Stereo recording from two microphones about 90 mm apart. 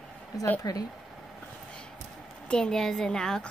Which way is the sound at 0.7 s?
45° left (ahead or behind).